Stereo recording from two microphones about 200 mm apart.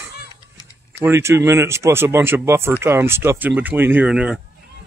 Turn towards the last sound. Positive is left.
turn(degrees=-5)  # may be behind; listen again after turning